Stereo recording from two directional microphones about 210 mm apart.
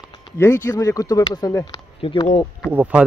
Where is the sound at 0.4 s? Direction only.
15° left (ahead or behind).